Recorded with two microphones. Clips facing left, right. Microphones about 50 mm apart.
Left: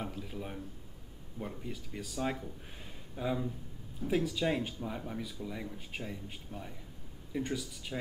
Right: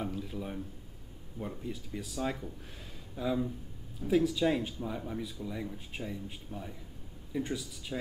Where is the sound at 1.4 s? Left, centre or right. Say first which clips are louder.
Right 2 dB; centre.